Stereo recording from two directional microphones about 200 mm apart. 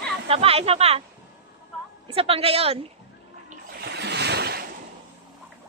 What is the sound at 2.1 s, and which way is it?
Speech, 30° right (ahead or behind).